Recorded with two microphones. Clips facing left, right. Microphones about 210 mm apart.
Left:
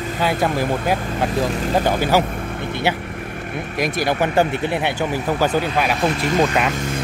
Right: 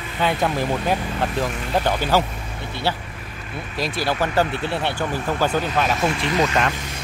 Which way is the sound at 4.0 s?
20° left (ahead or behind).